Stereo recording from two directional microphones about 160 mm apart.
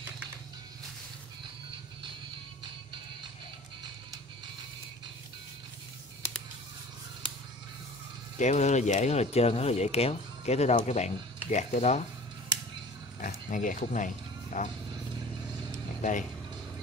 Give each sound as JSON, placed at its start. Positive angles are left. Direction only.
{"t": 8.4, "sound": "speech", "side_deg": 45}
{"t": 13.2, "sound": "speech", "side_deg": 55}
{"t": 16.0, "sound": "speech", "side_deg": 50}